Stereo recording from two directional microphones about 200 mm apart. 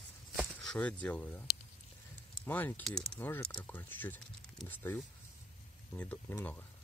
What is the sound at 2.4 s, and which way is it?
Speech, 10° left (ahead or behind).